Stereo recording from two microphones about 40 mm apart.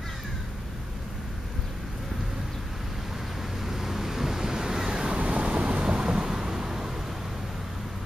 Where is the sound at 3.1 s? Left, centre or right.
Centre.